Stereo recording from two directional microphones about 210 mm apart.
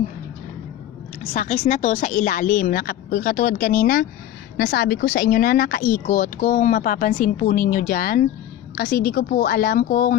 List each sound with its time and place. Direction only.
1.3 s speech: 35° left (ahead or behind)